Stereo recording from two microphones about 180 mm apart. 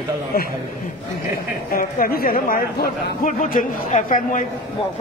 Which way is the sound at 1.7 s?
50° left (ahead or behind).